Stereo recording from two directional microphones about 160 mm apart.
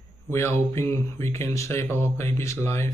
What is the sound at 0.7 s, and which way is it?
Speech, 15° left (ahead or behind).